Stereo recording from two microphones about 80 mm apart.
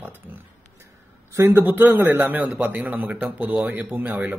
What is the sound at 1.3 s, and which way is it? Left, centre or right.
A man's voice, right.